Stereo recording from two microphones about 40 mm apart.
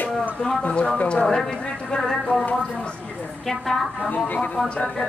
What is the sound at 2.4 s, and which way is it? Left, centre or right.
Speech, left.